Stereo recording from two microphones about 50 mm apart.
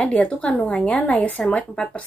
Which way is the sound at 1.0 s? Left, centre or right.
Left.